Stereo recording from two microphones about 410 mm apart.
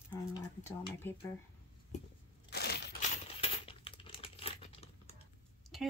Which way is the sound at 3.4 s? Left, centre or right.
Centre.